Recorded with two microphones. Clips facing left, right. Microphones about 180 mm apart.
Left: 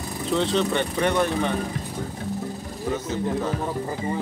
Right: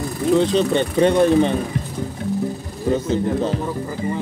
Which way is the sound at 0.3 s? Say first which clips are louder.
Right 6 dB; 15° right (ahead or behind).